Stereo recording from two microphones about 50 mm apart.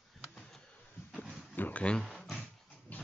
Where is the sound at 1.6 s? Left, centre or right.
Left.